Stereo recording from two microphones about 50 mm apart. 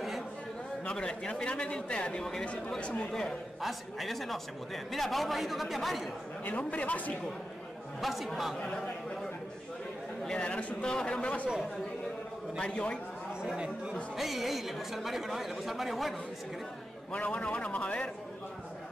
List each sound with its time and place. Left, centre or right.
0.8 s a man's voice: centre
3.6 s a man's voice: centre
6.4 s speech: left
8.0 s a man's voice: centre
8.5 s a sound: centre
10.3 s speech: left
12.5 s speech: left
13.4 s speech: centre
14.1 s a man's voice: centre
17.1 s speech: left